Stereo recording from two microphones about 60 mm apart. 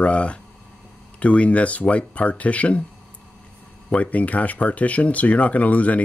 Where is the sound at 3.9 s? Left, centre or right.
Left.